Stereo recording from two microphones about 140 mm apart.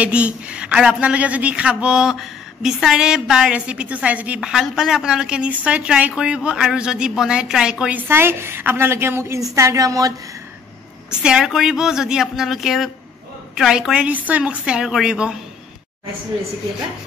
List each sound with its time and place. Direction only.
0.0 s a woman's voice: 10° right (ahead or behind); by 10.1 s 25° right (ahead or behind)
11.1 s speech: 5° right (ahead or behind)